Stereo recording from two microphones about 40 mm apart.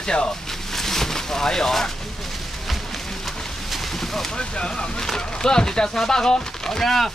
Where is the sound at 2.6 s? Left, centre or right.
Centre.